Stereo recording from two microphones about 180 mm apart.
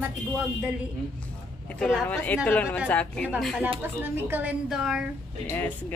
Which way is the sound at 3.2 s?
5° right (ahead or behind).